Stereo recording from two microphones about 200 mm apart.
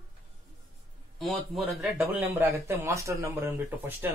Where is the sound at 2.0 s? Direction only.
10° right (ahead or behind).